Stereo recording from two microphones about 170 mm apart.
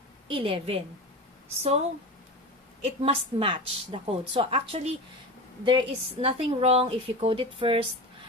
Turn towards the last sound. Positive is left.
turn(degrees=-35)  # may be behind; listen again after turning